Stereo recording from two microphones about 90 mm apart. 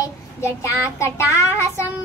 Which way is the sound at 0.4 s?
35° left (ahead or behind).